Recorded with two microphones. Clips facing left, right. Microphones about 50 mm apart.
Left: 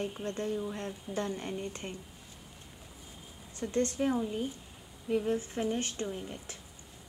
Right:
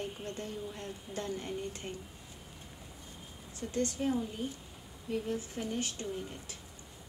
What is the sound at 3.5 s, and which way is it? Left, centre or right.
Speech, left.